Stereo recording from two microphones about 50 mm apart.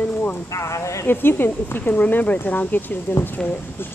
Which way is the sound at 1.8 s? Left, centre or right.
Left.